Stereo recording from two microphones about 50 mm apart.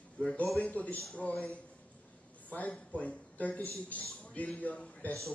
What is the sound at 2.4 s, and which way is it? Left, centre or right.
Speech, left.